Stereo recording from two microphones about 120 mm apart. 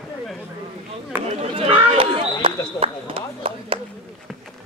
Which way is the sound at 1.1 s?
15° right (ahead or behind).